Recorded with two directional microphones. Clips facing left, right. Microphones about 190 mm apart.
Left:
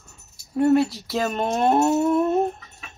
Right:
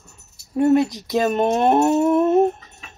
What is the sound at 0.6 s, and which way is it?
Speech, 20° right (ahead or behind).